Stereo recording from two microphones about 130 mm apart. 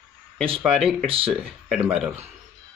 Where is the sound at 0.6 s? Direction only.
Centre (ahead or behind).